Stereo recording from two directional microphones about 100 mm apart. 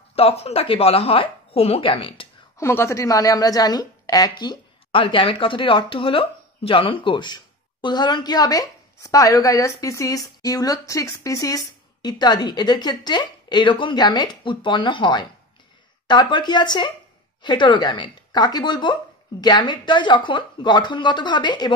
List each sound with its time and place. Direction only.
0.1 s a woman's voice: 85° left; by 2.2 s 65° left (ahead or behind)
2.5 s a woman's voice: 25° left (ahead or behind); by 21.7 s 50° left (ahead or behind)